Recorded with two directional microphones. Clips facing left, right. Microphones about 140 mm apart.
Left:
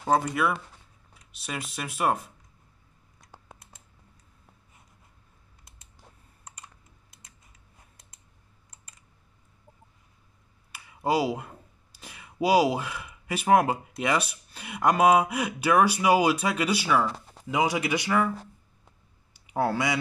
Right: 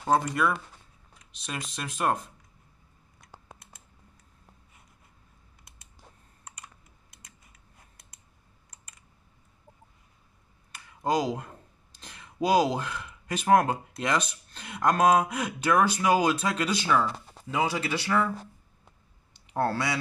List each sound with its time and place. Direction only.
0.0 s speech: 5° left (ahead or behind)
10.7 s speech: 10° left (ahead or behind)
19.3 s speech: 10° left (ahead or behind)